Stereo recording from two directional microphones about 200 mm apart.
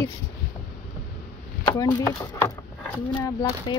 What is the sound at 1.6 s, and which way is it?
Speech, 20° left (ahead or behind).